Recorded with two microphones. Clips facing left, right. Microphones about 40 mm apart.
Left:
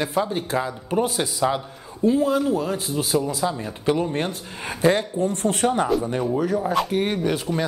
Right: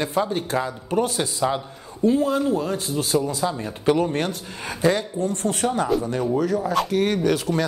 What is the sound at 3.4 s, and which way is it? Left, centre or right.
Speech, centre.